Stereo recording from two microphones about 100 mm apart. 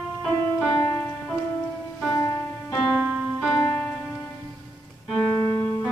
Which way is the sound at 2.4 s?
10° left (ahead or behind).